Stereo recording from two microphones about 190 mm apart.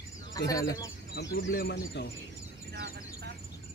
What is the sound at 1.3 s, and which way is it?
Speech, 55° left (ahead or behind).